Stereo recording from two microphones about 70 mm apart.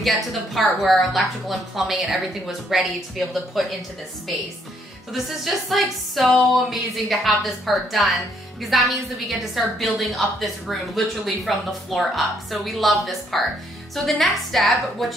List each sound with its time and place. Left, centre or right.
0.0 s speech: centre
5.1 s speech: centre